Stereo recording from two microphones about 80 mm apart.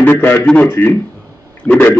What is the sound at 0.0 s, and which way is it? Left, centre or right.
A man's voice, left.